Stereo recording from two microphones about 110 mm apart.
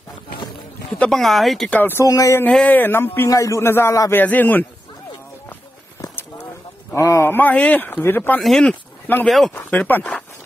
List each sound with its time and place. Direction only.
0.9 s speech: 5° left (ahead or behind)
1.7 s speech: 20° left (ahead or behind)
2.0 s a sound: 30° left (ahead or behind)
2.5 s a man's voice: 15° left (ahead or behind)
4.2 s a man's voice: 15° left (ahead or behind)
7.0 s a man's voice: 30° left (ahead or behind)
8.4 s speech: 5° left (ahead or behind)
9.0 s a man's voice: 15° left (ahead or behind)